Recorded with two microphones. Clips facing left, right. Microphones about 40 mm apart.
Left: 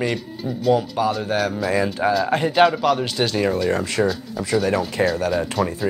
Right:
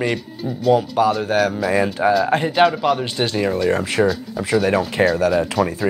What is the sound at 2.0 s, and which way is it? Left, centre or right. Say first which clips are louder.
Speech: right 3 dB; centre.